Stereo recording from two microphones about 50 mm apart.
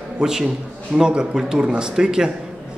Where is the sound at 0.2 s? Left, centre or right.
Centre.